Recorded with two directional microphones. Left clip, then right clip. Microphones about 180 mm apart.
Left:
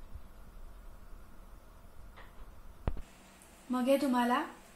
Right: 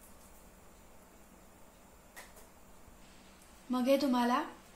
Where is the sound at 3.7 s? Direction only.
5° right (ahead or behind).